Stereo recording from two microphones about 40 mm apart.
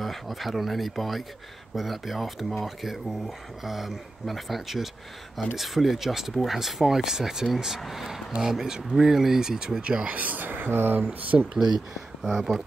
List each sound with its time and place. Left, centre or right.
0.0 s speech: centre
9.8 s speech: right
11.3 s speech: right
12.2 s speech: centre